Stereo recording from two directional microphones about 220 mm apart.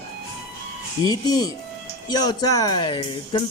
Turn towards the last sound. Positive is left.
turn(degrees=20)  # may be behind; listen again after turning